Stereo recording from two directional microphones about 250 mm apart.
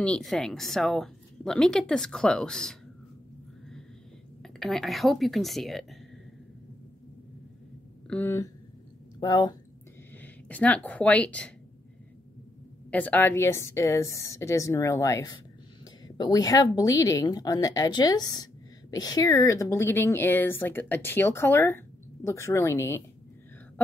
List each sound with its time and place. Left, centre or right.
0.0 s speech: centre
4.4 s speech: centre
8.1 s a woman's voice: centre
10.2 s speech: centre
12.9 s a woman's voice: centre